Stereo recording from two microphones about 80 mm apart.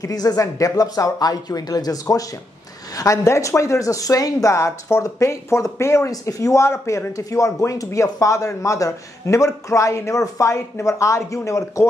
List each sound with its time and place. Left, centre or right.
0.0 s speech: left